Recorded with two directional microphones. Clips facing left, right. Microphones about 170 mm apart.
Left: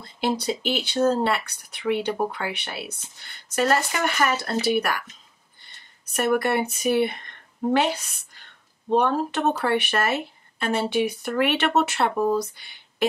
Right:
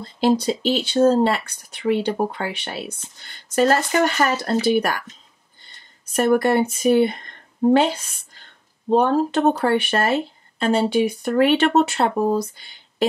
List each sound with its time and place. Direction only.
0.0 s speech: 30° right (ahead or behind)
6.1 s a woman's voice: 30° right (ahead or behind)
8.9 s speech: 30° right (ahead or behind)